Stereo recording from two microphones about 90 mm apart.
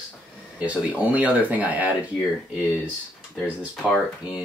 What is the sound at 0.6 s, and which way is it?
Speech, 15° right (ahead or behind).